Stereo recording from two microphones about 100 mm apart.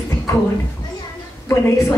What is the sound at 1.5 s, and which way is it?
Speech, 30° left (ahead or behind).